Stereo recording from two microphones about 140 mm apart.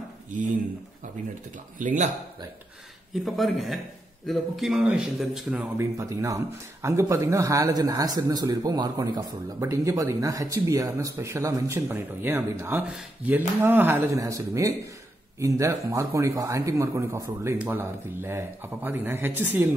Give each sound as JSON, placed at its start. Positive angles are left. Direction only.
{"t": 1.8, "sound": "speech", "side_deg": -65}
{"t": 3.3, "sound": "a man's voice", "side_deg": 0}
{"t": 5.8, "sound": "speech", "side_deg": -20}